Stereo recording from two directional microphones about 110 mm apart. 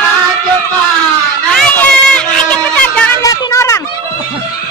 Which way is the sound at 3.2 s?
30° left (ahead or behind).